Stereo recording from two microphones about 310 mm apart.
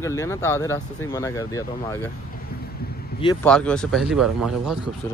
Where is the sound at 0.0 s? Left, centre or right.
Centre.